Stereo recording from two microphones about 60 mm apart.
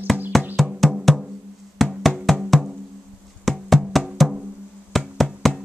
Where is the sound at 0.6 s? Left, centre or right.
Centre.